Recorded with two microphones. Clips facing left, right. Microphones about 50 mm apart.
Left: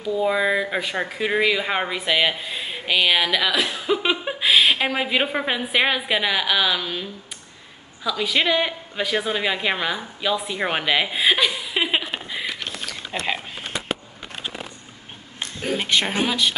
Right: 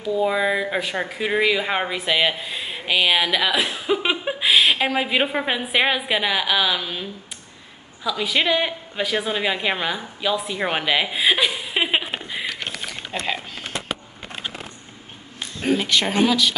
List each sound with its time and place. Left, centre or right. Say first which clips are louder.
0.1 s speech: even; centre
11.6 s a sound: right 1 dB; centre
13.1 s speech: even; centre
15.8 s speech: even; centre